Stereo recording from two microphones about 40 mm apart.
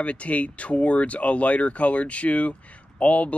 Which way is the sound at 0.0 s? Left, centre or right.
Left.